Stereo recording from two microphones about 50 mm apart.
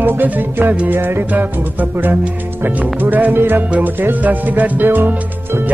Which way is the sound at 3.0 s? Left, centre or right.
Right.